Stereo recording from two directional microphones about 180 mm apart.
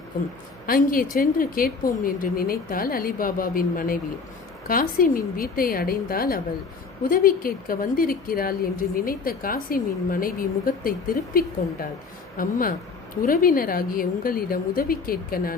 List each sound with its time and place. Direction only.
0.7 s a woman's voice: 50° left (ahead or behind)